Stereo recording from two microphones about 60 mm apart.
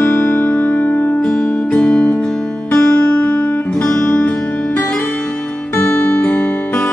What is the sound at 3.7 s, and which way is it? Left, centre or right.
Music, centre.